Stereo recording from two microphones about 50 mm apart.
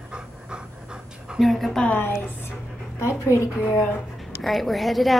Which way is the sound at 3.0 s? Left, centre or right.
Left.